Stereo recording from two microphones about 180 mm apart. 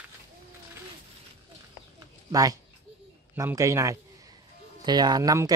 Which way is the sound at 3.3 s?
15° right (ahead or behind).